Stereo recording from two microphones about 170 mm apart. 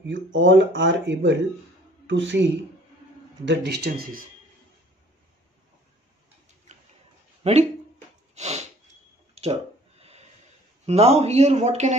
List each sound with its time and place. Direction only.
0.0 s speech: 90° right
3.4 s speech: 75° right (ahead or behind)
6.7 s a sound: 45° right (ahead or behind)
7.4 s speech: 40° right (ahead or behind)
8.4 s a sound: 40° right (ahead or behind)
10.9 s speech: 40° right (ahead or behind)